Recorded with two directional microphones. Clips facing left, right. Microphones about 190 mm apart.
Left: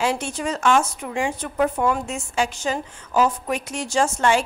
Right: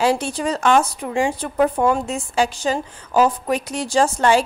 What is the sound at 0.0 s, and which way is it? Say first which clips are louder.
A woman's voice: right 4 dB; 35° right (ahead or behind).